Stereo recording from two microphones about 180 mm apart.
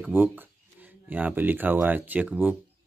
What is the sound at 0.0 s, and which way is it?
Speech, 10° right (ahead or behind).